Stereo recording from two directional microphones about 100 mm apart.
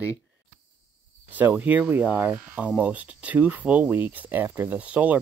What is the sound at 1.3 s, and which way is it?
Speech, 15° right (ahead or behind).